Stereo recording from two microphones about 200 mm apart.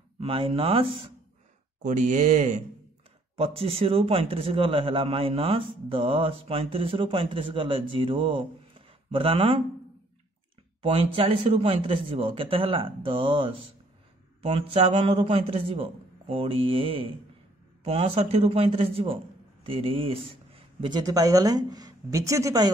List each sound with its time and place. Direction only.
0.2 s a man's voice: 25° right (ahead or behind)
1.8 s a man's voice: 40° right (ahead or behind)
10.8 s a man's voice: 25° right (ahead or behind)